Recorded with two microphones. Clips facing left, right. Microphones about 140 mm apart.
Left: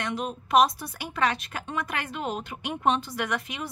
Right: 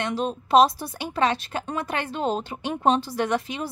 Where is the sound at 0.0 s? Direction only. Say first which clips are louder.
Right 4 dB; 30° right (ahead or behind).